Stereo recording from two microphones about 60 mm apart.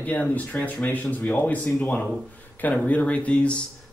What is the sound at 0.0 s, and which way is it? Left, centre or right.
Speech, left.